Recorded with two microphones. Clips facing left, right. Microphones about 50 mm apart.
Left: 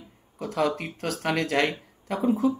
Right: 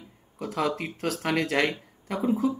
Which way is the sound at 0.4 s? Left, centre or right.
Centre.